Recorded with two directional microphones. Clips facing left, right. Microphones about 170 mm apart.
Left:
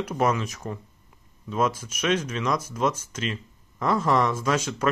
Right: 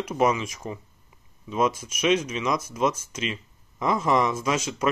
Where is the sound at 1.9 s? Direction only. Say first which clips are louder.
Right 2 dB; 10° right (ahead or behind).